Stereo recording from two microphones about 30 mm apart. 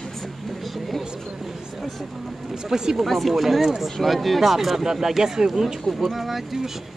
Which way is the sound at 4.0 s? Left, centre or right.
Centre.